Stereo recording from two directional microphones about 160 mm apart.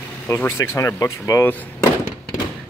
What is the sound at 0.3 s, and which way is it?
Speech, 15° left (ahead or behind).